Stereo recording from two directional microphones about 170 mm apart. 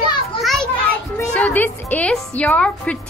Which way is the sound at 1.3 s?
10° left (ahead or behind).